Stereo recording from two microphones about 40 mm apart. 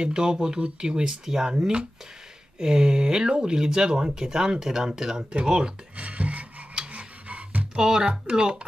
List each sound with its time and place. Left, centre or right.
0.0 s speech: centre
5.9 s filing: right
6.9 s a sound: right
7.7 s speech: centre
8.0 s speech: right